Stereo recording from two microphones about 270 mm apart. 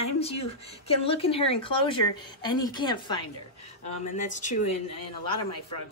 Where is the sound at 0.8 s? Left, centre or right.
Left.